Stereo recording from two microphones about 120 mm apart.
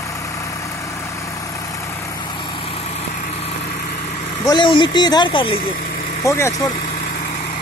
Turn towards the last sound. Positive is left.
turn(degrees=25)  # may be behind; listen again after turning